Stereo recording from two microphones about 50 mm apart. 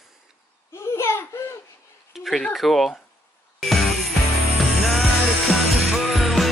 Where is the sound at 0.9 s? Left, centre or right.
Left.